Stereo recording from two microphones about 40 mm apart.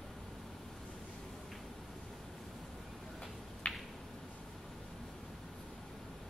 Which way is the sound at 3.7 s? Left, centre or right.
Left.